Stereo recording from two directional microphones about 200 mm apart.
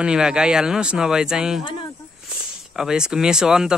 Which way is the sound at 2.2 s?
5° right (ahead or behind).